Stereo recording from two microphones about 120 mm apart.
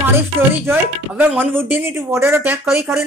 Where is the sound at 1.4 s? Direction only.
15° right (ahead or behind).